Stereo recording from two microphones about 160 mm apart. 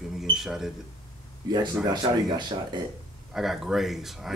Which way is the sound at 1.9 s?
30° right (ahead or behind).